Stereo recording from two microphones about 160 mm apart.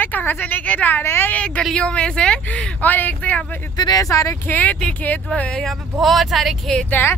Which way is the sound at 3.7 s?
25° left (ahead or behind).